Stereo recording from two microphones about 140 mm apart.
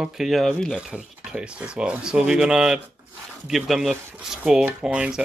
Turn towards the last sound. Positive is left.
turn(degrees=-5)  # may be behind; listen again after turning